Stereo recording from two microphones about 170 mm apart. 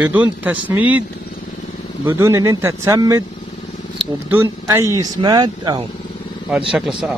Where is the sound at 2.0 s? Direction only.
15° right (ahead or behind).